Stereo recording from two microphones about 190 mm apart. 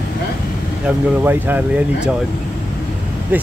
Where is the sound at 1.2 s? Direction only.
10° right (ahead or behind).